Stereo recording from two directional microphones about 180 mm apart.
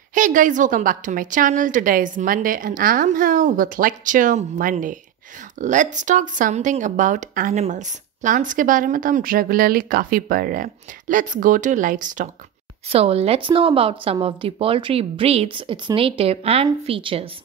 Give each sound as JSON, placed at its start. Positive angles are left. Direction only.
{"t": 0.1, "sound": "a woman's voice", "side_deg": -45}
{"t": 12.9, "sound": "a woman's voice", "side_deg": -35}